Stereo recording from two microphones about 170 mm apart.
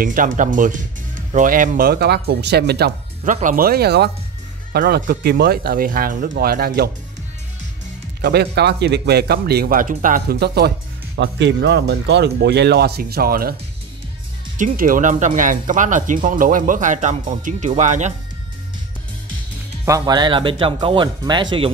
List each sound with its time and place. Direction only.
0.0 s speech: 50° right (ahead or behind); by 2.9 s 70° right (ahead or behind)
3.3 s speech: 50° right (ahead or behind); by 6.9 s 65° right (ahead or behind)
8.2 s speech: 75° right (ahead or behind)
11.1 s speech: 90° right; by 13.6 s 60° right (ahead or behind)
14.6 s speech: 50° right (ahead or behind)
19.8 s speech: 20° right (ahead or behind)